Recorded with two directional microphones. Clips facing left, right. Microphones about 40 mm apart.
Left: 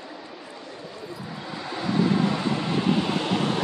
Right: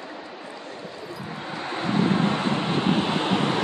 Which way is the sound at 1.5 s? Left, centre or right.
Right.